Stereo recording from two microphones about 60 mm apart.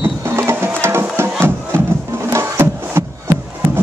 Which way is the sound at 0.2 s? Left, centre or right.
Right.